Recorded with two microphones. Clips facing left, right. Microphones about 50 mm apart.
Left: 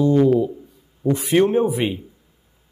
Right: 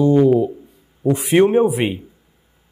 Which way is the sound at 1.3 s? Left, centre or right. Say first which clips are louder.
Right 3 dB; centre.